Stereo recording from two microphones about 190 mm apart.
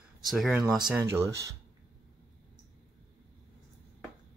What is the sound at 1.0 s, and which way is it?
Cutlery, 15° right (ahead or behind).